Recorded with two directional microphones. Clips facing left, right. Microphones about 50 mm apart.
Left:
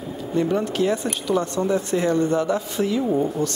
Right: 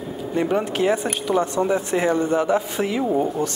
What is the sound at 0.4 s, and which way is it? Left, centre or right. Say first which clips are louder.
Speech: even; right.